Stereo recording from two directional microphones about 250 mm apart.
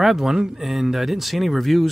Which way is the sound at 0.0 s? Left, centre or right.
Centre.